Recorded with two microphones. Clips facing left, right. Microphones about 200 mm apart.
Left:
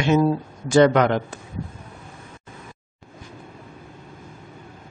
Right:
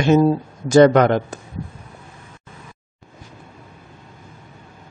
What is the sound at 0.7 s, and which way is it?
Speech, 45° right (ahead or behind).